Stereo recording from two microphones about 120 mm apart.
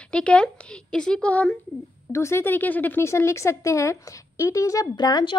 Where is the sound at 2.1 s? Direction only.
25° left (ahead or behind).